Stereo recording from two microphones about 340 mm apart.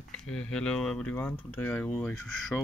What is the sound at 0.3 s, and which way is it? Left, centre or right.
Speech, centre.